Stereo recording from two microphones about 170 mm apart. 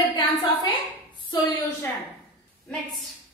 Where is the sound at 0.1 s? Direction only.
25° left (ahead or behind).